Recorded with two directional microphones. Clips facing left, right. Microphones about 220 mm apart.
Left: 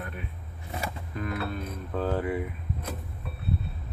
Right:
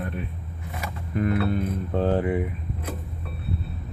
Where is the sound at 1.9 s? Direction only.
30° right (ahead or behind).